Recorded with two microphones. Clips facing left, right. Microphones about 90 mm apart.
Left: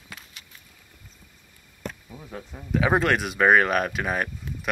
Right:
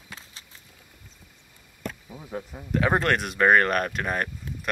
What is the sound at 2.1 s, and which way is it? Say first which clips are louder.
Speech: right 3 dB; 10° right (ahead or behind).